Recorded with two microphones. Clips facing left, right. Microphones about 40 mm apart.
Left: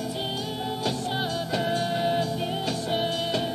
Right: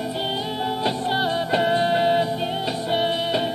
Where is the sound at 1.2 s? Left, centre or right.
Right.